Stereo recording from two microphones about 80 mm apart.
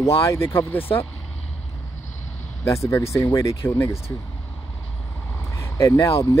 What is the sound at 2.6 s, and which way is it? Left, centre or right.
Speech, left.